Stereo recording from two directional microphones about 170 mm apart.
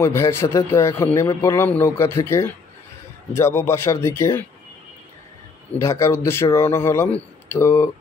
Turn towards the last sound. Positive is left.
turn(degrees=15)  # may be behind; listen again after turning